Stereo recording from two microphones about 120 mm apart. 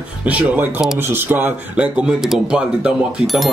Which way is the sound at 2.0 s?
5° right (ahead or behind).